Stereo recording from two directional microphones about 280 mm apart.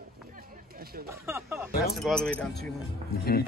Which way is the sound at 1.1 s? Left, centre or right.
Centre.